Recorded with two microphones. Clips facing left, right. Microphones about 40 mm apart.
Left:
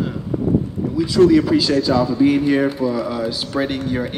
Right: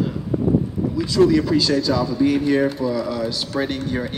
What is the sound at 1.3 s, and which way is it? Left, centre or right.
Speech, centre.